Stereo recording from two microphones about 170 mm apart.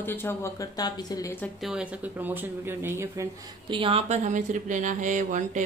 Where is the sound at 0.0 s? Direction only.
10° left (ahead or behind).